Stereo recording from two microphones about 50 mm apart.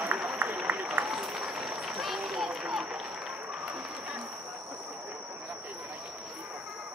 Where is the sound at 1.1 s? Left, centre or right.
Centre.